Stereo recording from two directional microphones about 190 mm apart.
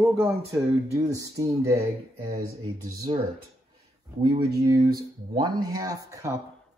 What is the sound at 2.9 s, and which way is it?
Speech, 20° right (ahead or behind).